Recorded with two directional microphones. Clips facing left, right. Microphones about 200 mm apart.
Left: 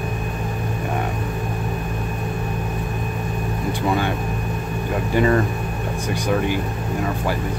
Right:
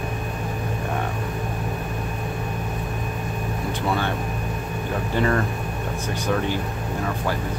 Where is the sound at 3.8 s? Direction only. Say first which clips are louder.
Left 3 dB; 15° left (ahead or behind).